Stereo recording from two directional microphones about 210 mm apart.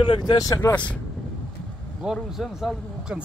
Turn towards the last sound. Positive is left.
turn(degrees=0)  # may be behind; listen again after turning